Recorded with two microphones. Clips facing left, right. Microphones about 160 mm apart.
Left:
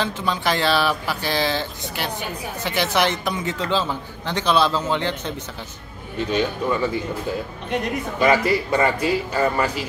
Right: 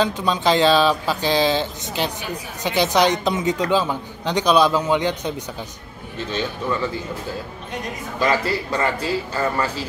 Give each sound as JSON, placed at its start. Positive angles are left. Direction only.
{"t": 0.0, "sound": "a man's voice", "side_deg": -20}
{"t": 6.6, "sound": "speech", "side_deg": 15}
{"t": 8.2, "sound": "speech", "side_deg": 20}